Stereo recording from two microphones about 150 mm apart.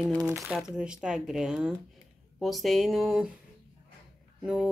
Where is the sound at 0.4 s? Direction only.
5° right (ahead or behind).